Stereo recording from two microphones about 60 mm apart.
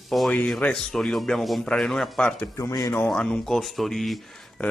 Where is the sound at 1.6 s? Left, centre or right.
Centre.